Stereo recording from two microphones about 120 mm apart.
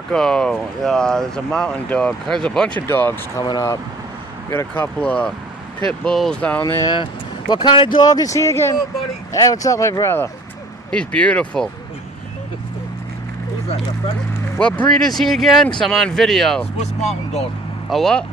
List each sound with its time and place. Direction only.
0.1 s speech: 5° left (ahead or behind)
2.9 s speech: 20° left (ahead or behind)
4.5 s speech: 20° left (ahead or behind)
5.0 s speech: 10° left (ahead or behind)
6.6 s speech: 25° left (ahead or behind)
6.9 s speech: 40° left (ahead or behind); by 10.3 s 25° left (ahead or behind)
10.9 s speech: 10° left (ahead or behind)
14.6 s speech: 10° left (ahead or behind)
16.8 s speech: 65° left (ahead or behind)
17.8 s speech: 5° left (ahead or behind)